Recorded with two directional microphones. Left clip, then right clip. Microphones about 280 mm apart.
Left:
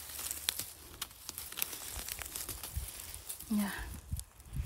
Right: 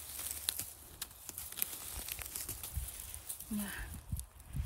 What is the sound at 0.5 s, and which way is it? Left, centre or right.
Typing, centre.